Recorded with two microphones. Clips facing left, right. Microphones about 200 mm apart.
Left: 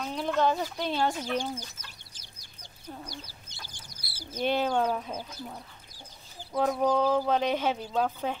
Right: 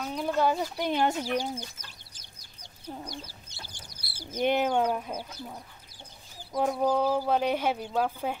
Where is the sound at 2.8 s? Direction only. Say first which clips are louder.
Right 3 dB; 15° right (ahead or behind).